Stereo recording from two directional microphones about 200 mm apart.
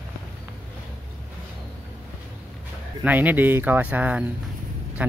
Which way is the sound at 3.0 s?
10° right (ahead or behind).